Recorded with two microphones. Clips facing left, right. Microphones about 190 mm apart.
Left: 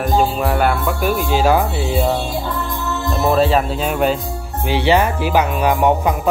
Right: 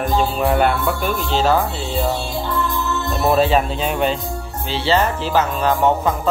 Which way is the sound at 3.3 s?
Centre (ahead or behind).